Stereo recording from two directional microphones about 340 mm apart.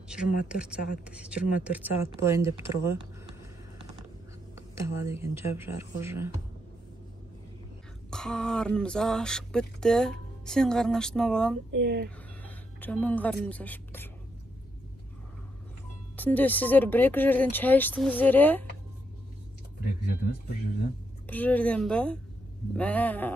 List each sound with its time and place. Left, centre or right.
0.1 s speech: centre
4.7 s speech: centre
8.1 s speech: centre
11.7 s speech: right
12.4 s speech: centre
16.2 s speech: centre
21.3 s speech: centre